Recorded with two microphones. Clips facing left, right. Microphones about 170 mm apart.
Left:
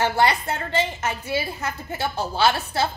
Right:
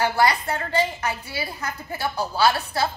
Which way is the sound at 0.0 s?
25° left (ahead or behind).